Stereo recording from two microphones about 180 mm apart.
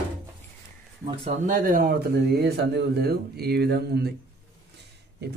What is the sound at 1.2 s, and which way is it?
Speech, 45° right (ahead or behind).